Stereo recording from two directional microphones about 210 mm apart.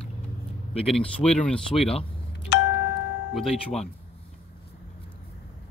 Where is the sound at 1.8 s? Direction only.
30° left (ahead or behind).